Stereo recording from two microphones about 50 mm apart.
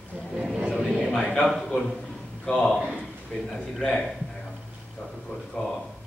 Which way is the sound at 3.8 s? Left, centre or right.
Centre.